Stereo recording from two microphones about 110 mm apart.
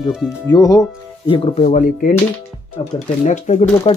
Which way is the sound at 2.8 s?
55° left (ahead or behind).